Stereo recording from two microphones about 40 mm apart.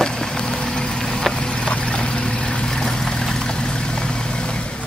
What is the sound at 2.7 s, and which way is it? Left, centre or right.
Vehicle, centre.